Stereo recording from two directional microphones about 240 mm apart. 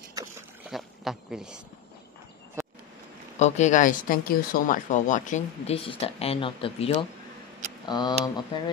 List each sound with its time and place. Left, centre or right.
0.2 s boat: centre
0.7 s a sound: centre
3.3 s speech: left